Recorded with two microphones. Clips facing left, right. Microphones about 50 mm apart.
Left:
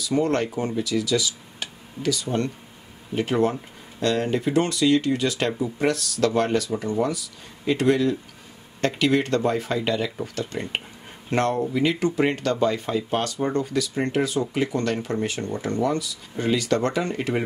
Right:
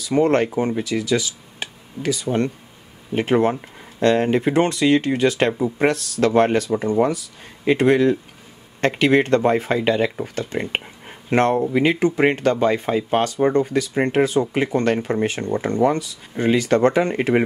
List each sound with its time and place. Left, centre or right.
0.0 s speech: right